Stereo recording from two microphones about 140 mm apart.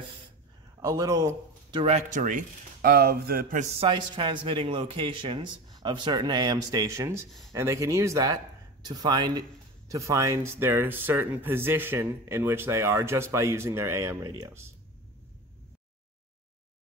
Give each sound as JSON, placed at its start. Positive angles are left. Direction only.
{"t": 0.7, "sound": "speech", "side_deg": -25}
{"t": 1.8, "sound": "speech", "side_deg": -50}
{"t": 3.8, "sound": "speech", "side_deg": -35}